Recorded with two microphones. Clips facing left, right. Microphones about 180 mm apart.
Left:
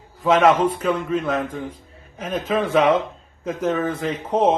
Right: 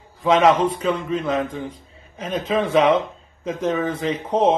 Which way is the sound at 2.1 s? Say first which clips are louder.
Even; 5° left (ahead or behind).